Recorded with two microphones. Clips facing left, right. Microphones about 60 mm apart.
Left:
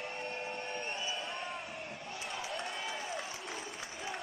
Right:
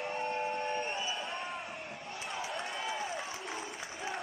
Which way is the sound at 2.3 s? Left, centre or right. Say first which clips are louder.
Right 2 dB; centre.